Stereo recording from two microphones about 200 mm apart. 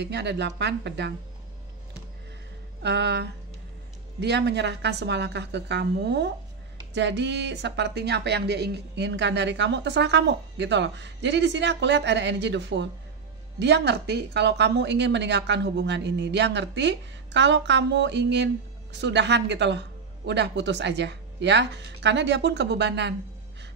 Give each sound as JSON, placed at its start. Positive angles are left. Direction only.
{"t": 0.0, "sound": "a woman's voice", "side_deg": -60}
{"t": 2.8, "sound": "a woman's voice", "side_deg": -55}